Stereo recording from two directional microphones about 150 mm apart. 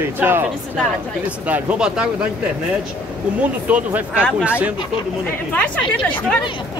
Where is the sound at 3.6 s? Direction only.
10° right (ahead or behind).